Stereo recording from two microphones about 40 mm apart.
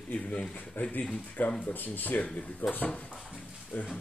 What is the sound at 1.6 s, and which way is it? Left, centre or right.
Speech, left.